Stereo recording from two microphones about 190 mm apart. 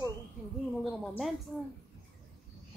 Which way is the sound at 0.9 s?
Centre (ahead or behind).